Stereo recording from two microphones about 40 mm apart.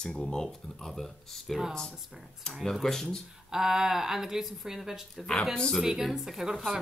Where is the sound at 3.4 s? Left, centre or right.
Centre.